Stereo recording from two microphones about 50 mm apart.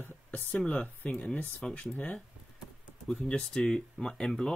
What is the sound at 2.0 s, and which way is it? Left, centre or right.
Speech, left.